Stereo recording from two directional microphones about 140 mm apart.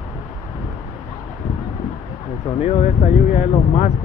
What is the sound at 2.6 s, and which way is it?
Vehicle, 55° left (ahead or behind).